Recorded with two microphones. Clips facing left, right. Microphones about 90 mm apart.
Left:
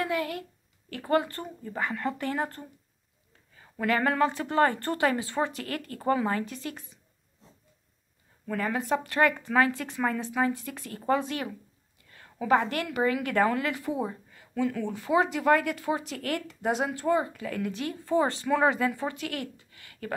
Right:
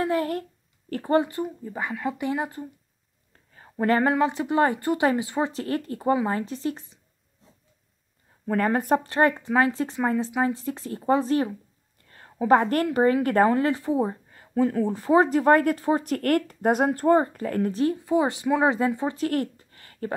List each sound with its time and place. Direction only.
0.0 s a sound: 40° right (ahead or behind)
1.0 s a woman's voice: 25° right (ahead or behind)
1.3 s speech: 10° right (ahead or behind)
3.7 s speech: 35° right (ahead or behind)
4.0 s speech: 20° right (ahead or behind)
5.5 s speech: 30° right (ahead or behind)
5.9 s a woman's voice: 15° right (ahead or behind)
8.5 s speech: 45° right (ahead or behind)
9.0 s a woman's voice: 30° right (ahead or behind)
12.0 s a sound: 40° right (ahead or behind)
12.4 s speech: 40° right (ahead or behind)
17.9 s a woman's voice: 15° right (ahead or behind)
19.1 s speech: 40° right (ahead or behind)